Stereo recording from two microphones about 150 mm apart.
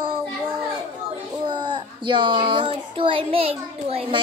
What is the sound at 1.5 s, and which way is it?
A child's voice, 30° right (ahead or behind).